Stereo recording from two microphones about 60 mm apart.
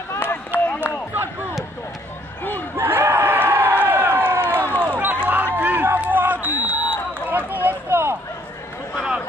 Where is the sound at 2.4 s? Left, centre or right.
Left.